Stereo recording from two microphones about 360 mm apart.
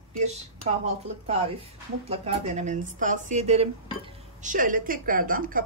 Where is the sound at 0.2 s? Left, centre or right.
Centre.